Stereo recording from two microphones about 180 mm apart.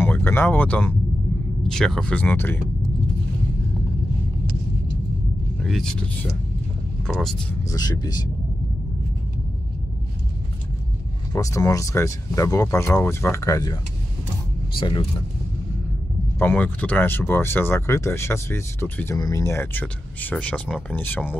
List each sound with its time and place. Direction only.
0.0 s a sound: 10° left (ahead or behind)
1.7 s speech: 5° left (ahead or behind)
5.6 s speech: centre (ahead or behind)
7.1 s speech: centre (ahead or behind)
7.7 s speech: 20° left (ahead or behind)
11.3 s speech: 15° left (ahead or behind)
14.8 s speech: 30° left (ahead or behind)
16.3 s speech: 10° left (ahead or behind)